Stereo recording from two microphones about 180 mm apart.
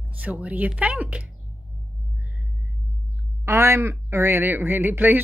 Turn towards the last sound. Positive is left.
turn(degrees=-10)  # may be behind; listen again after turning